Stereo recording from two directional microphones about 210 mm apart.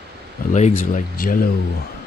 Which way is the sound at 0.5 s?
35° left (ahead or behind).